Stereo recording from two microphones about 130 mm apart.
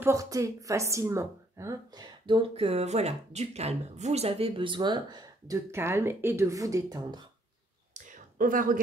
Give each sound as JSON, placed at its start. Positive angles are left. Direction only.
{"t": 0.0, "sound": "speech", "side_deg": -25}
{"t": 2.2, "sound": "speech", "side_deg": -40}
{"t": 5.7, "sound": "speech", "side_deg": -20}
{"t": 7.9, "sound": "a sound", "side_deg": -75}